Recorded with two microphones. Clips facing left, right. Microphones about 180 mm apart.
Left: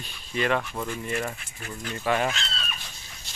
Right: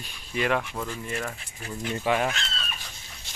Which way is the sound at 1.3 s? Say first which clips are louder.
Right 2 dB; 25° right (ahead or behind).